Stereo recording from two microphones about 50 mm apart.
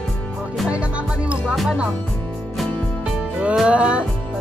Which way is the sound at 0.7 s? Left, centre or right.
Right.